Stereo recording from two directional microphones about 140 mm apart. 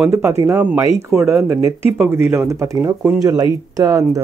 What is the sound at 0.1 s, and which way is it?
Speech, 20° right (ahead or behind).